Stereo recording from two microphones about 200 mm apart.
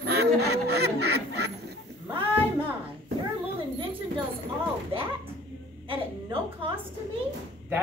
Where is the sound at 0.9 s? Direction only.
55° right (ahead or behind).